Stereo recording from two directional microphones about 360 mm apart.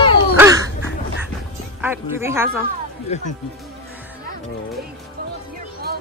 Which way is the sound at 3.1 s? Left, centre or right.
Centre.